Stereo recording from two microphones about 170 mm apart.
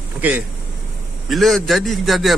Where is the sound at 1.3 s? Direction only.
Centre (ahead or behind).